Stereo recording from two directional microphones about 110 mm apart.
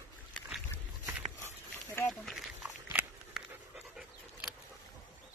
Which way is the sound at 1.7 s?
20° left (ahead or behind).